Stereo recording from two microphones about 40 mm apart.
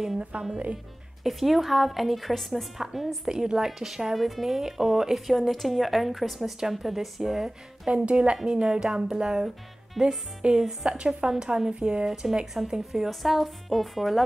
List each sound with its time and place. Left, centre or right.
0.3 s speech: right
1.2 s speech: centre
3.3 s speech: centre
7.9 s a woman's voice: right
8.6 s speech: centre
10.9 s a woman's voice: right; by 14.2 s centre